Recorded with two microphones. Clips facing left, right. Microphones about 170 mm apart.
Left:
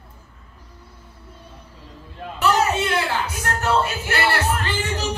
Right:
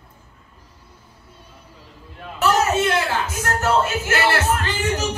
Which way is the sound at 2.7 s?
45° right (ahead or behind).